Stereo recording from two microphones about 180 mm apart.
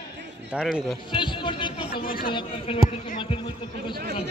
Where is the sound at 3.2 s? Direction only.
30° left (ahead or behind).